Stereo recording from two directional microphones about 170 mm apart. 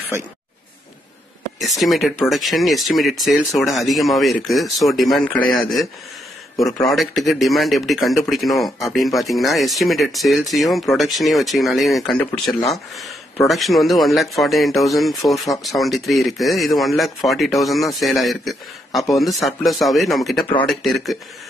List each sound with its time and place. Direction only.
1.6 s speech: centre (ahead or behind)
6.9 s speech: centre (ahead or behind)